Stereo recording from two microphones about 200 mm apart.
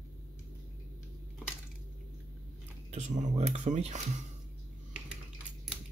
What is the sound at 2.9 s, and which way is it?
Speech, 35° right (ahead or behind).